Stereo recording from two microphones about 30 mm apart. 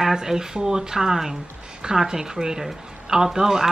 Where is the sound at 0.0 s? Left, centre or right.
Centre.